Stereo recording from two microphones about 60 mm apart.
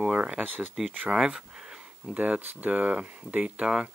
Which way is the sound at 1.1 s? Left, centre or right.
Centre.